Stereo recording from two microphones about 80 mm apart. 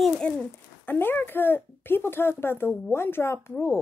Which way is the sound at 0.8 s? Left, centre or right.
Left.